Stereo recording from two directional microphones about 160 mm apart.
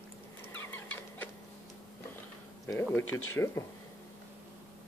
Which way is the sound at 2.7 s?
15° left (ahead or behind).